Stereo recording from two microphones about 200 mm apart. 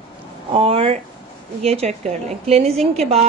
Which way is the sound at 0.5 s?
30° right (ahead or behind).